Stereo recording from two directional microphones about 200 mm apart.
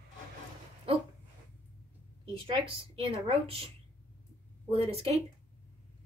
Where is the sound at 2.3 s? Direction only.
25° right (ahead or behind).